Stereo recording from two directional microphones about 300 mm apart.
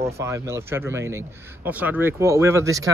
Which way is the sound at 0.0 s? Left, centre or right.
Centre.